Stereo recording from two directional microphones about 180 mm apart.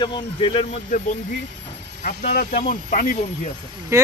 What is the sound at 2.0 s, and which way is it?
Speech, 50° left (ahead or behind).